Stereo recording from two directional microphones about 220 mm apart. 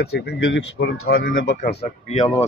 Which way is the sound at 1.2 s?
55° left (ahead or behind).